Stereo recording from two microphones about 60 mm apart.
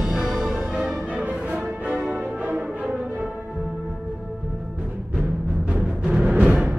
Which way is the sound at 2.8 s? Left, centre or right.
Centre.